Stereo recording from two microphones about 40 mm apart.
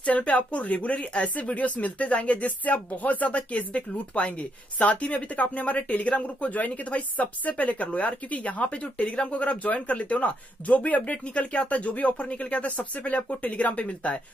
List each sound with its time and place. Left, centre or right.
0.0 s speech: left